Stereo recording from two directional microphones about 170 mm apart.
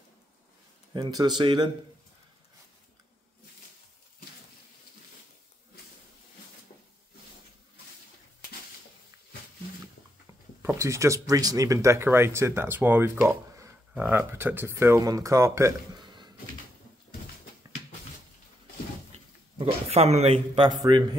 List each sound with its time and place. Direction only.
0.9 s speech: 25° right (ahead or behind)
10.6 s speech: 15° right (ahead or behind)
19.1 s a sound: 40° right (ahead or behind)
20.9 s speech: 25° right (ahead or behind)